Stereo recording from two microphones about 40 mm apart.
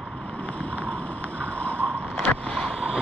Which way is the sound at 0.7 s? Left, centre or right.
Left.